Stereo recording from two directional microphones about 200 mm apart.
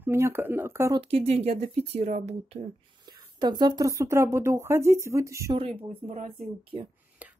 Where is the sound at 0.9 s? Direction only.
30° right (ahead or behind).